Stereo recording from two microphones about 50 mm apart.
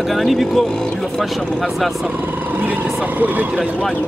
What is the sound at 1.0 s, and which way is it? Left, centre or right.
Speech, centre.